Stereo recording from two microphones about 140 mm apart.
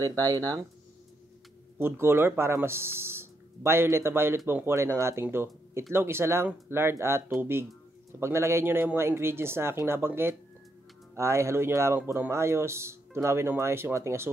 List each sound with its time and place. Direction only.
0.2 s speech: 25° right (ahead or behind)
1.8 s speech: 15° right (ahead or behind)